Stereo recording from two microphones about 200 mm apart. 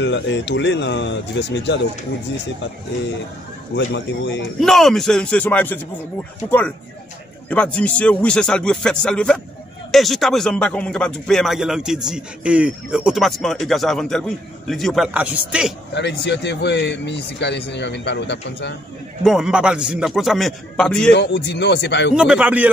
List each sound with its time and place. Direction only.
0.0 s speech: 60° left (ahead or behind)
3.7 s speech: 60° left (ahead or behind)
4.6 s speech: centre (ahead or behind)
7.4 s speech: 5° left (ahead or behind)
15.9 s speech: 60° left (ahead or behind)
19.2 s speech: centre (ahead or behind)
21.1 s speech: 60° left (ahead or behind)
22.1 s speech: 5° right (ahead or behind)